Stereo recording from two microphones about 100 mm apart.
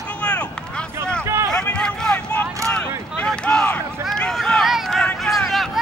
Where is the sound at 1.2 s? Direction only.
25° right (ahead or behind).